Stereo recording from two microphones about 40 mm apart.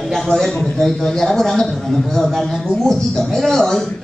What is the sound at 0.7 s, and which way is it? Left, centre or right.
A woman's voice, centre.